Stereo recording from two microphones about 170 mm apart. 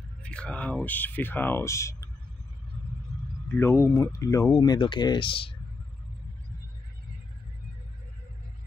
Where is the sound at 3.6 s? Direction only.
15° left (ahead or behind).